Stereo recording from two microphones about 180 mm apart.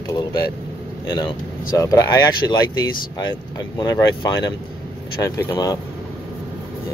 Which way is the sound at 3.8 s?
20° left (ahead or behind).